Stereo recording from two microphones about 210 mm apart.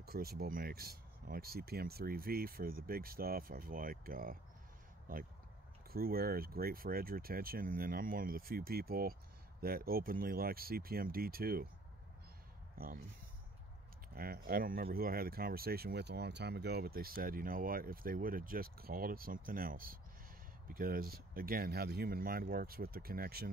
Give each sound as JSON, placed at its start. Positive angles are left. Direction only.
{"t": 0.0, "sound": "speech", "side_deg": -45}
{"t": 12.7, "sound": "speech", "side_deg": -45}
{"t": 14.1, "sound": "speech", "side_deg": -45}